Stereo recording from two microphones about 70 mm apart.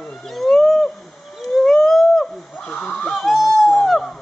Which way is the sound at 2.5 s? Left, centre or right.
Centre.